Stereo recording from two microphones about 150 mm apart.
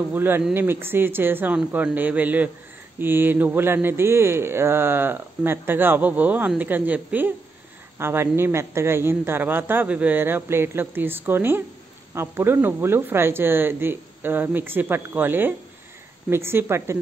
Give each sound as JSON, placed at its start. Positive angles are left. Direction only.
{"t": 0.1, "sound": "speech", "side_deg": -15}